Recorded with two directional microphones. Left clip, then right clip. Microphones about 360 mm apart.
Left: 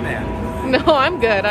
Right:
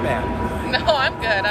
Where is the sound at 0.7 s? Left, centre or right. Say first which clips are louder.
Left 5 dB; centre.